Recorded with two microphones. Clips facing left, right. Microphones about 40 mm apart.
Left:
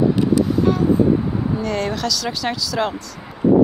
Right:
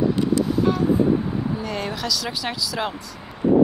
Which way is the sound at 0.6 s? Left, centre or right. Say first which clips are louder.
Left 3 dB; centre.